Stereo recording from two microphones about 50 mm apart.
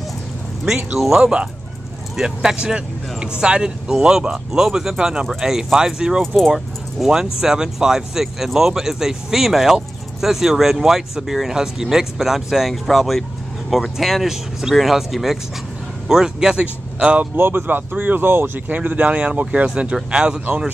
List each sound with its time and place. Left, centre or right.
0.9 s speech: centre
17.4 s speech: right
18.7 s speech: right